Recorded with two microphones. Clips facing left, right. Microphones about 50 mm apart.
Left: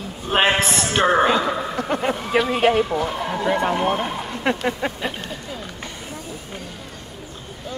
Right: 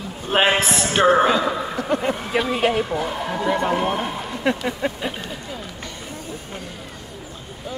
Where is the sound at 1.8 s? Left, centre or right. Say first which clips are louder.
Right 1 dB; left.